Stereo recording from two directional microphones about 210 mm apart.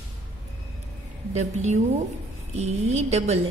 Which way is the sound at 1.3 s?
35° right (ahead or behind).